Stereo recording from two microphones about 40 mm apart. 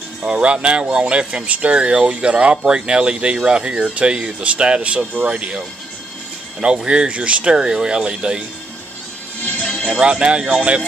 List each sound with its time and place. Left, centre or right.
0.3 s speech: right
6.6 s speech: right
7.5 s speech: centre
9.8 s speech: right